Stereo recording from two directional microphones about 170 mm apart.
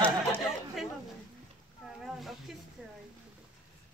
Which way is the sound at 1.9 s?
Centre (ahead or behind).